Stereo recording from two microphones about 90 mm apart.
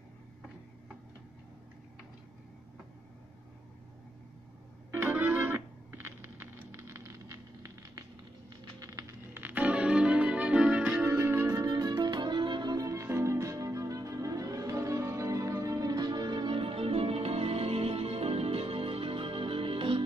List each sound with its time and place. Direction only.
4.9 s music: 25° right (ahead or behind)
6.7 s fire: 30° right (ahead or behind)
8.7 s music: 40° right (ahead or behind)
9.3 s music: 20° right (ahead or behind)
11.1 s music: 25° right (ahead or behind)
11.6 s music: 45° right (ahead or behind); by 20.0 s 80° right